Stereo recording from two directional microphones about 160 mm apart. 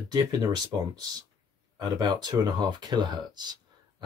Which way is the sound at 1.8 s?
25° right (ahead or behind).